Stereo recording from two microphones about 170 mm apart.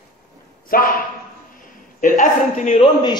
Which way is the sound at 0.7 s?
60° left (ahead or behind).